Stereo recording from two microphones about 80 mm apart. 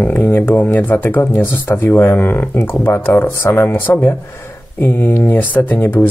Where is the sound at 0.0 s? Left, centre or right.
Left.